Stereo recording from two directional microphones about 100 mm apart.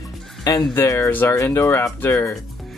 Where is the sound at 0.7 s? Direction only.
30° left (ahead or behind).